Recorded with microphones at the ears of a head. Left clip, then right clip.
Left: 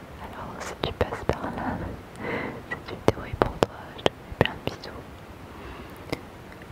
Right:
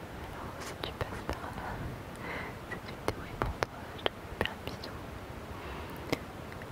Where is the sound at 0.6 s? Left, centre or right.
Left.